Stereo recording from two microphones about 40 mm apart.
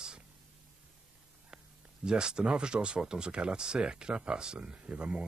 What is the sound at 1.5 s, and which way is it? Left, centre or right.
Speech, right.